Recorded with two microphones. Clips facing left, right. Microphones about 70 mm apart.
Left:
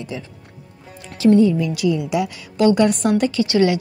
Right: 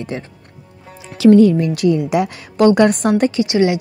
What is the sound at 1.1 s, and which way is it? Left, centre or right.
Speech, right.